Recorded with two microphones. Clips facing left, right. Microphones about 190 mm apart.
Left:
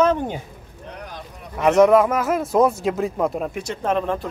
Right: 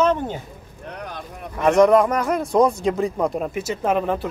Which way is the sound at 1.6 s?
5° left (ahead or behind).